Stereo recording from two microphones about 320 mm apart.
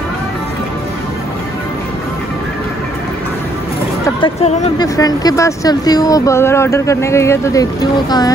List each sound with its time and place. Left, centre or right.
4.0 s speech: centre